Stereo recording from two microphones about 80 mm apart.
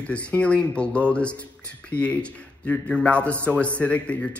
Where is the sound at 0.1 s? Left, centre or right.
Centre.